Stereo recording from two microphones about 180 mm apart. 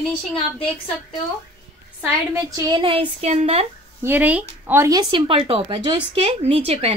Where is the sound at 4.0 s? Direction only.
10° right (ahead or behind).